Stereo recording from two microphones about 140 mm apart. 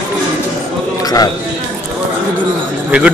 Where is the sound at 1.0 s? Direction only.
25° left (ahead or behind).